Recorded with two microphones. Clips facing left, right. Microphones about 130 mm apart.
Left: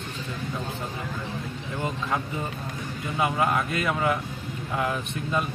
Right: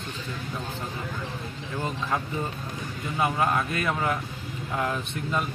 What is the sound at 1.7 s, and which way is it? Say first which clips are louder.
Speech: even; 20° left (ahead or behind).